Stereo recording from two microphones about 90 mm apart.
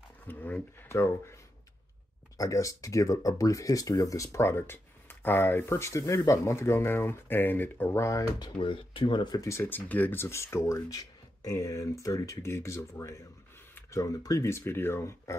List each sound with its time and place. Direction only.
0.3 s speech: 20° left (ahead or behind)
2.3 s speech: 35° left (ahead or behind); by 8.0 s 20° left (ahead or behind)
8.0 s speech: 35° left (ahead or behind)
8.5 s speech: 75° left (ahead or behind)
9.4 s speech: 30° left (ahead or behind)
10.2 s speech: 30° left (ahead or behind)